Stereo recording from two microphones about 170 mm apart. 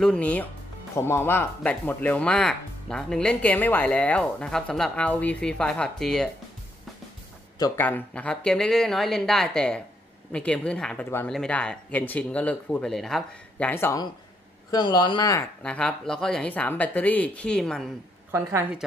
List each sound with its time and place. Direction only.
0.0 s speech: 5° left (ahead or behind)
7.5 s speech: 20° left (ahead or behind)
7.8 s speech: 10° left (ahead or behind)
14.7 s speech: 25° left (ahead or behind)
15.6 s speech: 5° left (ahead or behind)
18.3 s a woman's voice: 15° right (ahead or behind)